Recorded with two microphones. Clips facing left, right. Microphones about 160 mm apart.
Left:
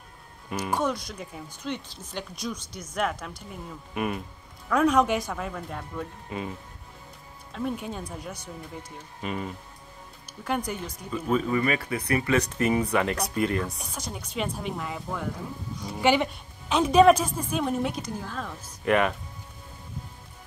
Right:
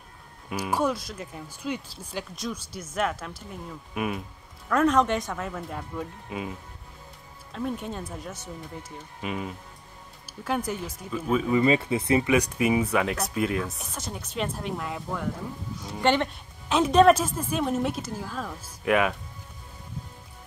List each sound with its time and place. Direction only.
0.5 s speech: 5° right (ahead or behind)
7.5 s speech: centre (ahead or behind)
11.5 s speech: 25° right (ahead or behind)
12.3 s speech: 10° right (ahead or behind)